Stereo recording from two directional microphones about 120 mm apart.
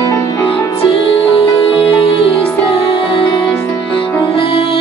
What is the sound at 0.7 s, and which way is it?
Music, 45° left (ahead or behind).